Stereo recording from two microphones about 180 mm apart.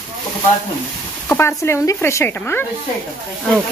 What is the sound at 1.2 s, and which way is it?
Speech, 15° left (ahead or behind).